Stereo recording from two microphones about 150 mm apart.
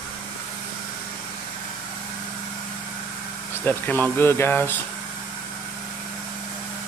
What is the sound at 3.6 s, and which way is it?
Speech, 10° left (ahead or behind).